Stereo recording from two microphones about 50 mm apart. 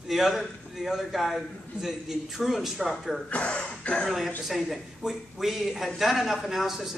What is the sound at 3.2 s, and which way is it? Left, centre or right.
Throat clearing, left.